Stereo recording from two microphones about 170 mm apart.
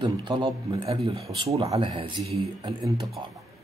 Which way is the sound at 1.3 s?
35° right (ahead or behind).